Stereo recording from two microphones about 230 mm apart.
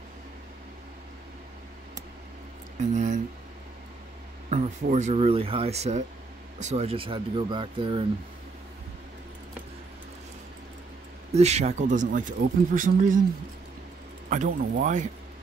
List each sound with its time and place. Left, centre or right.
2.8 s speech: right
4.5 s speech: right
11.3 s speech: right
14.3 s speech: right